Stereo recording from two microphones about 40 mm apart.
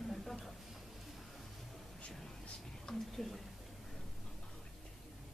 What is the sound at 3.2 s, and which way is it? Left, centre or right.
Speech, centre.